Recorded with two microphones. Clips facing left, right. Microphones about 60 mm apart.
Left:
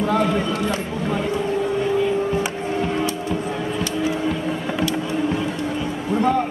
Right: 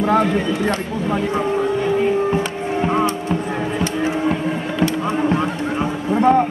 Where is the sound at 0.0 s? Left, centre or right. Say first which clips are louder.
Right 3 dB; right.